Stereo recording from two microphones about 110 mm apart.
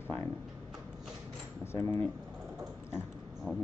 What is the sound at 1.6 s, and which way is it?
Speech, 20° left (ahead or behind).